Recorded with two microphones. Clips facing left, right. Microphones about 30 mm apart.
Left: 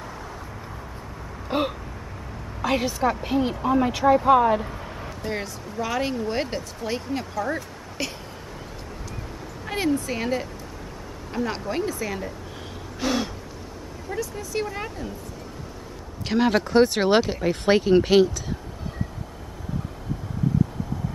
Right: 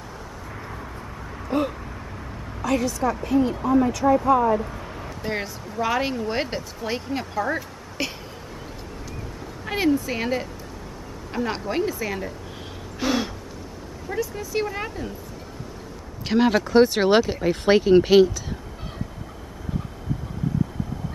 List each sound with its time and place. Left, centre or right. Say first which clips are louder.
1.5 s a woman's voice: right 1 dB; left
4.3 s a woman's voice: left 2 dB; left
4.6 s a sound: right 1 dB; centre
5.2 s speech: right 2 dB; centre
9.7 s speech: right 3 dB; centre
13.0 s a sound: right 1 dB; centre
14.0 s speech: right 3 dB; centre
16.3 s speech: right 1 dB; centre